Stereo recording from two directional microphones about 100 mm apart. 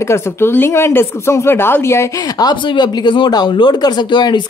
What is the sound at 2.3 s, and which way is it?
Speech, 45° left (ahead or behind).